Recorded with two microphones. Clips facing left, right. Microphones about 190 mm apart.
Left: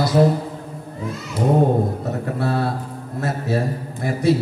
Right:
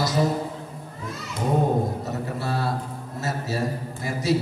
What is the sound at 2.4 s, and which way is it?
Speech, 60° left (ahead or behind).